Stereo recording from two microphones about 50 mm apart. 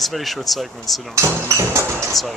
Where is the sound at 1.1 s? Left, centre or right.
Right.